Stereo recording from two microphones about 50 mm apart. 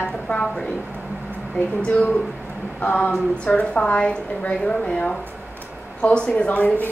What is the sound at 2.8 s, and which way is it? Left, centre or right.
A woman's voice, left.